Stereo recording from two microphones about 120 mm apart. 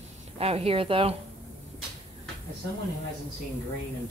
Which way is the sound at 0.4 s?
55° right (ahead or behind).